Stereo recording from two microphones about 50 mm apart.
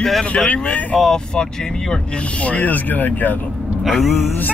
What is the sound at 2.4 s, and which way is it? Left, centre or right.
Speech, left.